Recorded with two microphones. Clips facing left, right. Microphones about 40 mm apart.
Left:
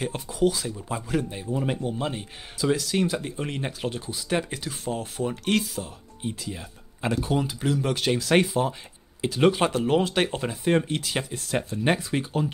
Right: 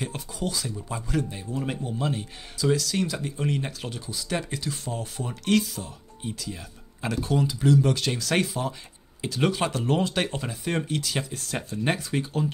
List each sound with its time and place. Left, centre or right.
0.0 s speech: centre